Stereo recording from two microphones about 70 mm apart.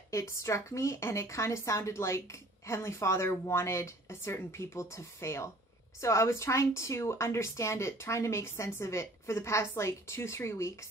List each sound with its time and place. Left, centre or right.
0.1 s a woman's voice: left